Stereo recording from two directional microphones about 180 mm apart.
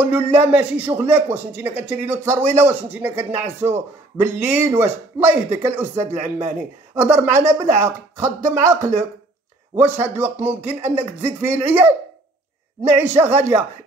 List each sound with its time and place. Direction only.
0.3 s speech: 10° right (ahead or behind)
9.8 s speech: 10° right (ahead or behind)
12.9 s speech: 10° right (ahead or behind)